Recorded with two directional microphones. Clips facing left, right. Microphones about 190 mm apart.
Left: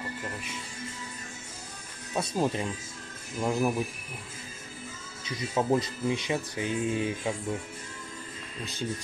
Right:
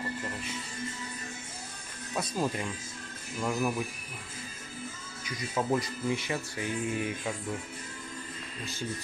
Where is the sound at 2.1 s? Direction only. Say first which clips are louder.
Left 3 dB; 30° left (ahead or behind).